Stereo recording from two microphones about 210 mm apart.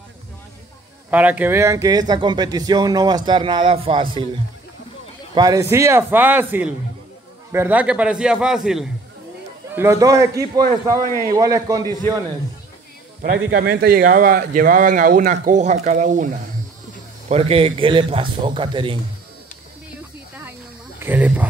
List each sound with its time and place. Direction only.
1.1 s a man's voice: 10° right (ahead or behind); by 4.3 s 25° right (ahead or behind)
5.3 s a man's voice: 15° right (ahead or behind)
9.8 s speech: 15° right (ahead or behind)
13.5 s a man's voice: 50° right (ahead or behind); by 18.9 s 25° right (ahead or behind)
21.0 s speech: 10° right (ahead or behind)